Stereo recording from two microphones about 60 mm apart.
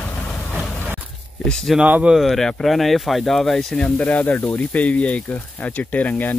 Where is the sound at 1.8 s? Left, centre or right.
Right.